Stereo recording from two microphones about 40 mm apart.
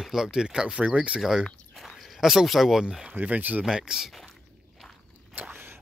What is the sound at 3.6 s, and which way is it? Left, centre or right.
Speech, centre.